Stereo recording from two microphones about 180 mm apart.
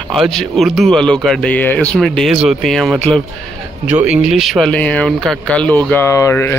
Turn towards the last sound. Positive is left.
turn(degrees=15)  # may be behind; listen again after turning